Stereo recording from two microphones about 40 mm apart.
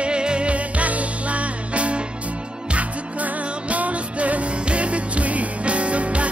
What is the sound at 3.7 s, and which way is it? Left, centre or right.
Music, right.